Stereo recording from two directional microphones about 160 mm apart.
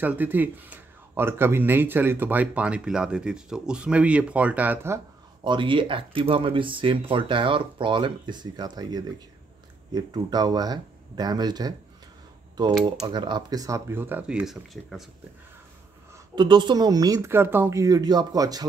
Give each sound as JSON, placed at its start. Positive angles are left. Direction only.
{"t": 0.0, "sound": "speech", "side_deg": -10}
{"t": 5.4, "sound": "speech", "side_deg": -30}
{"t": 16.3, "sound": "speech", "side_deg": -30}